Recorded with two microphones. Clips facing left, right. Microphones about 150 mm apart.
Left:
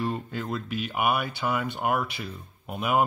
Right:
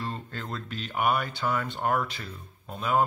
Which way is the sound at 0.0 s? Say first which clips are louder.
Left 6 dB; 10° left (ahead or behind).